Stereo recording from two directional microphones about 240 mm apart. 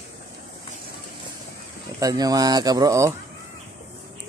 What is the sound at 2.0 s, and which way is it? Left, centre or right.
Speech, centre.